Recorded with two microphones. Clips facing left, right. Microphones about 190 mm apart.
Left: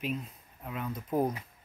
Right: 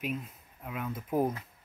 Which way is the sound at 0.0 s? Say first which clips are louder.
Left 1 dB; 5° right (ahead or behind).